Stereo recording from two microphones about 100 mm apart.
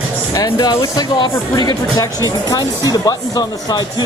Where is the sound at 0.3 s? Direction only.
40° left (ahead or behind).